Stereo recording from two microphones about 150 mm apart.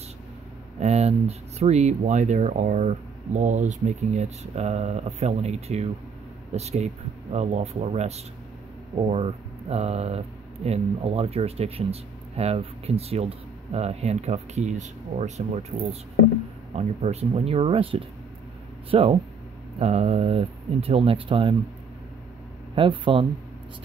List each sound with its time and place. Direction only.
0.7 s speech: 45° right (ahead or behind)
22.8 s speech: 35° right (ahead or behind)